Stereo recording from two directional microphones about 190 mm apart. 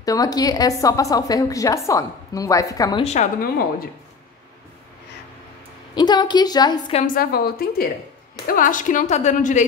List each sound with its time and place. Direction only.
0.0 s a woman's voice: 20° left (ahead or behind)
3.0 s a woman's voice: 35° left (ahead or behind)
5.9 s a woman's voice: 20° left (ahead or behind)
7.0 s a woman's voice: 50° left (ahead or behind)